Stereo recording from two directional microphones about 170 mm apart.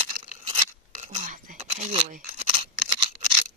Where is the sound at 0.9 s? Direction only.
45° right (ahead or behind).